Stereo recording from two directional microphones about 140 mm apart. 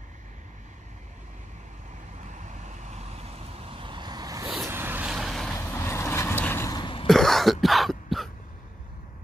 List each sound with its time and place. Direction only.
2.2 s vehicle: 60° right (ahead or behind); by 4.5 s 25° right (ahead or behind)
4.6 s vehicle: 15° right (ahead or behind)
5.1 s vehicle: centre (ahead or behind)
5.6 s vehicle: 20° left (ahead or behind)
6.7 s throat clearing: 35° left (ahead or behind)
7.1 s cough: centre (ahead or behind)